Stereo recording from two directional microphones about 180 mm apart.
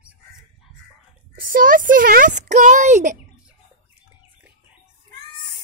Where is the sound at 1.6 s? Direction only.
50° right (ahead or behind).